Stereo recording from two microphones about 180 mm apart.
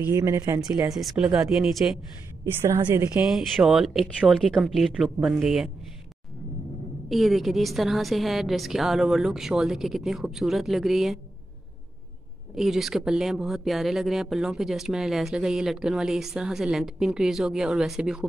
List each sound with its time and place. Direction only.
0.0 s a woman's voice: 15° right (ahead or behind)
0.9 s speech: centre (ahead or behind)
2.4 s a woman's voice: 15° right (ahead or behind)
3.3 s speech: centre (ahead or behind)
7.1 s speech: centre (ahead or behind)
12.5 s speech: centre (ahead or behind)